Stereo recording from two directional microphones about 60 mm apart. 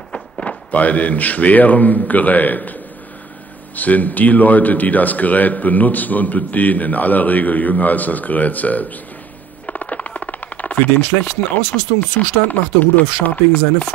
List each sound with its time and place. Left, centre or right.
0.1 s speech: centre
3.7 s a man's voice: left
9.7 s a sound: left
12.0 s a man's voice: left